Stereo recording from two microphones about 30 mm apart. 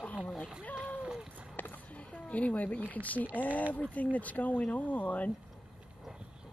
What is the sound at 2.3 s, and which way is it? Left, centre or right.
Speech, left.